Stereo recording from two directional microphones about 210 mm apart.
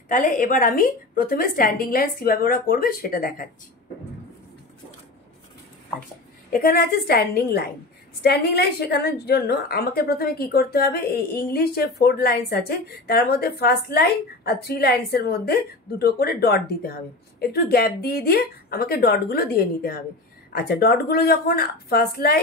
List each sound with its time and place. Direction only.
0.1 s speech: 40° left (ahead or behind)
6.5 s speech: 45° left (ahead or behind)